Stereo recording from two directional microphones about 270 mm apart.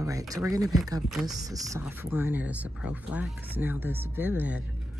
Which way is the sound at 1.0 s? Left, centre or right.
Centre.